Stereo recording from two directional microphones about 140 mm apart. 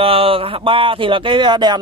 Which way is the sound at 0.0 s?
40° right (ahead or behind).